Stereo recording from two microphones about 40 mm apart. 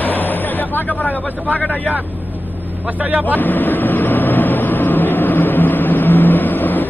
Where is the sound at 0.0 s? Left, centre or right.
Left.